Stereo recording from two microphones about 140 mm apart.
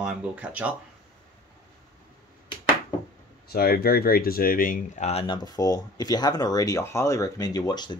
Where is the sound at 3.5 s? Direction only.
90° left.